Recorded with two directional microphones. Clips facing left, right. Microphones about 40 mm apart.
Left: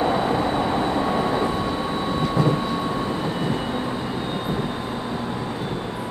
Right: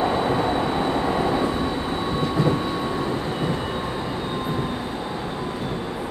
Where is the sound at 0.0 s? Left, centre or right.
Centre.